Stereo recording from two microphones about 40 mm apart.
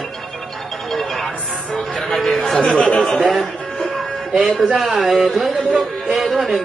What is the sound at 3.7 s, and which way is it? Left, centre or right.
Music, centre.